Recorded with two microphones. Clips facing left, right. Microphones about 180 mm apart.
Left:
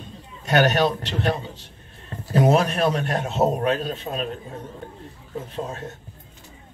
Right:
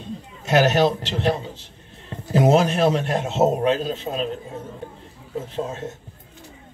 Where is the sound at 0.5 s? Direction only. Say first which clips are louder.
Right 2 dB; 25° right (ahead or behind).